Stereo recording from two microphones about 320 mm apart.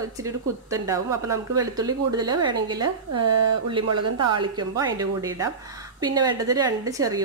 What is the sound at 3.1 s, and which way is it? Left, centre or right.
A woman's voice, right.